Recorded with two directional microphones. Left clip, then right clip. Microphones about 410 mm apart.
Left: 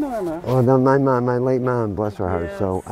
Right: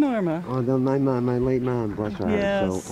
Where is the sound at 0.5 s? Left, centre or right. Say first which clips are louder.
Left 9 dB; left.